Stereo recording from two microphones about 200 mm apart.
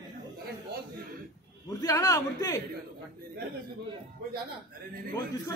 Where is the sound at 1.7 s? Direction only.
15° left (ahead or behind).